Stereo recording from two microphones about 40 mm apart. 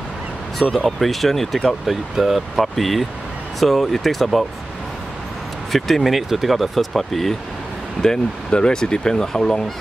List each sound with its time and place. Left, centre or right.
0.8 s speech: centre
1.7 s speech: centre
5.7 s speech: centre